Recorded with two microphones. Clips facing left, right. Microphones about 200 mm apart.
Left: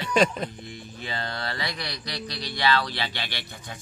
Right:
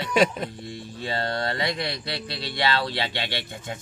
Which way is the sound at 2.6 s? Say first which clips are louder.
Even; 25° right (ahead or behind).